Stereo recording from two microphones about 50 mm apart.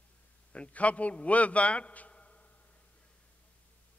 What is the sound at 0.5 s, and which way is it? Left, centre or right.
A man's voice, left.